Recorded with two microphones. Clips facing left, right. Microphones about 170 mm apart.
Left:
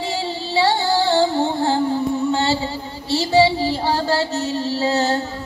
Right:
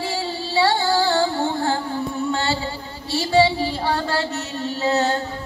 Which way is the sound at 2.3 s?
25° left (ahead or behind).